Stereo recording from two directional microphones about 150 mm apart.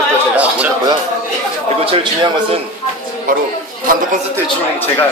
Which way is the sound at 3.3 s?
65° right (ahead or behind).